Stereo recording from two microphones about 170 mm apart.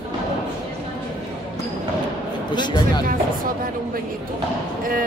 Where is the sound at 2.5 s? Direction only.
25° left (ahead or behind).